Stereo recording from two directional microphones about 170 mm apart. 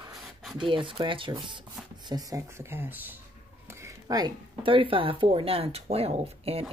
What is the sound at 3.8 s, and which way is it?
Speech, 20° right (ahead or behind).